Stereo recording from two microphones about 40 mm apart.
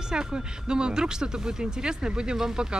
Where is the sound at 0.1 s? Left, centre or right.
Centre.